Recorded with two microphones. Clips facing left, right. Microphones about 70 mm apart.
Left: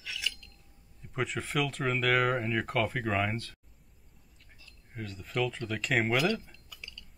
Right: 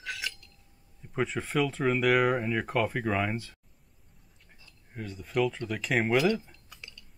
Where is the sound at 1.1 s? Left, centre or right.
Centre.